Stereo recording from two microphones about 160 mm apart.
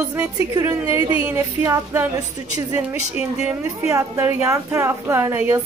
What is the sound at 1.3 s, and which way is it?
Speech, 10° right (ahead or behind).